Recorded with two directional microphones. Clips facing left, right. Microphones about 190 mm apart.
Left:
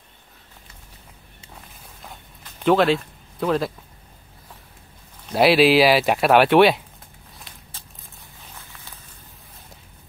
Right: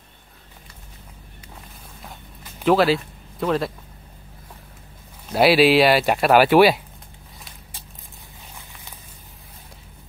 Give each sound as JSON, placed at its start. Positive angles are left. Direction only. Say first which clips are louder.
{"t": 1.5, "sound": "walk", "louder": "right 1 dB", "side_deg": 0}
{"t": 2.6, "sound": "speech", "louder": "even", "side_deg": 0}
{"t": 5.3, "sound": "speech", "louder": "even", "side_deg": 0}
{"t": 8.5, "sound": "walk", "louder": "even", "side_deg": -15}